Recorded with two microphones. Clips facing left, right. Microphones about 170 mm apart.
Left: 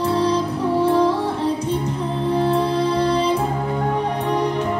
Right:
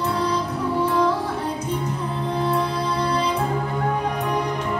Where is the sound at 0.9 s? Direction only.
30° left (ahead or behind).